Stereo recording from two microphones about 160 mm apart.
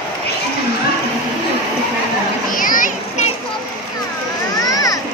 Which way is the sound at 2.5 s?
55° left (ahead or behind).